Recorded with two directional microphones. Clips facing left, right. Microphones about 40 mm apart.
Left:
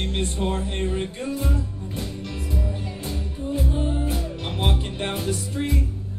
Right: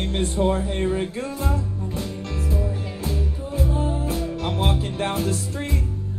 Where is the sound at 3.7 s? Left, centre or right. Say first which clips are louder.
Right 1 dB; left.